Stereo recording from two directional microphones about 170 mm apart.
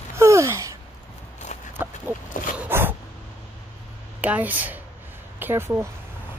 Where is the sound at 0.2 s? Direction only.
15° right (ahead or behind).